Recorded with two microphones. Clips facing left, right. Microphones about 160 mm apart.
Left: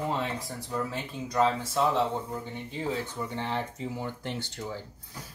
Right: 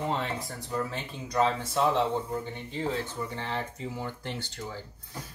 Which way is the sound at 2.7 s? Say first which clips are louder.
Right 1 dB; 15° left (ahead or behind).